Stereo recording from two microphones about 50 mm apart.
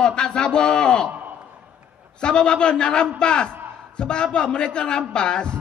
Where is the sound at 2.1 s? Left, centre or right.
Centre.